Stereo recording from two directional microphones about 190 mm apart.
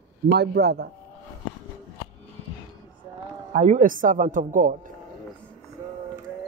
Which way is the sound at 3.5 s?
40° right (ahead or behind).